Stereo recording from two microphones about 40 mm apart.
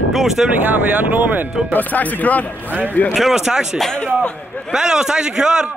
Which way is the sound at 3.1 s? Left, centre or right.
Centre.